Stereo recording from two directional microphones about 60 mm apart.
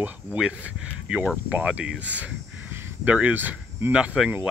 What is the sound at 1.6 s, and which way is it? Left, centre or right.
Speech, right.